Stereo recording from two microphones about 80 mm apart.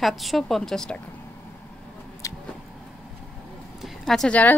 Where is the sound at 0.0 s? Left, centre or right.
Centre.